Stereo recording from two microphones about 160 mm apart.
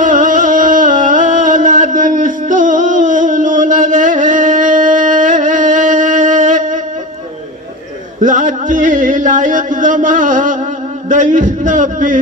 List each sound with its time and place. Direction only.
0.0 s music: 55° right (ahead or behind)
8.2 s music: 55° right (ahead or behind)